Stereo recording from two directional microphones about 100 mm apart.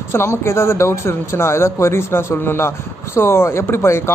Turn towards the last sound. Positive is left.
turn(degrees=25)  # may be behind; listen again after turning